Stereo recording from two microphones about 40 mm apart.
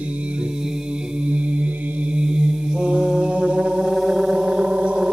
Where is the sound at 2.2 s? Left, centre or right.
Right.